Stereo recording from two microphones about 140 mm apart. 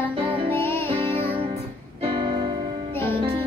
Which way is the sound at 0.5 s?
15° left (ahead or behind).